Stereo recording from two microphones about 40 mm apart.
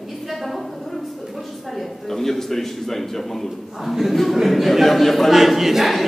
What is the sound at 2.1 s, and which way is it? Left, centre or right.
A man's voice, centre.